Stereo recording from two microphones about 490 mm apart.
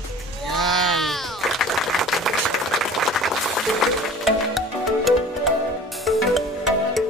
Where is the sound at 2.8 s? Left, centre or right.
Centre.